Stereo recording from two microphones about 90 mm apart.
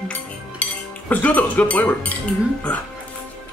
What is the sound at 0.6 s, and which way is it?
Cutlery, 15° left (ahead or behind).